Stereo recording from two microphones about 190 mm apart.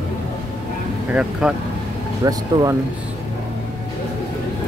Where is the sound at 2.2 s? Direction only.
20° right (ahead or behind).